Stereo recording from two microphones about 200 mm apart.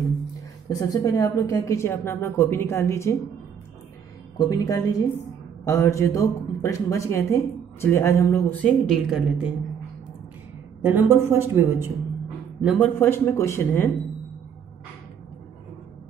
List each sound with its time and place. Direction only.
0.7 s speech: 20° left (ahead or behind)
4.4 s speech: 20° left (ahead or behind); by 9.5 s centre (ahead or behind)
10.8 s speech: 10° right (ahead or behind)
12.6 s speech: 5° left (ahead or behind)